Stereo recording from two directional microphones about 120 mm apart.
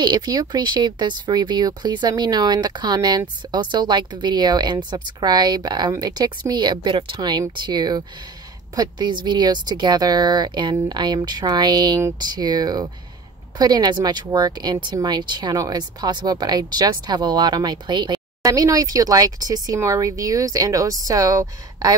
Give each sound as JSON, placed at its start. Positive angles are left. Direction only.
{"t": 0.0, "sound": "speech", "side_deg": -35}